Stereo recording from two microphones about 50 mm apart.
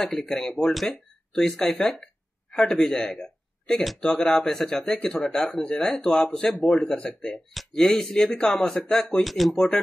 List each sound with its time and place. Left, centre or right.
0.0 s speech: centre
7.5 s speech: centre
9.2 s speech: centre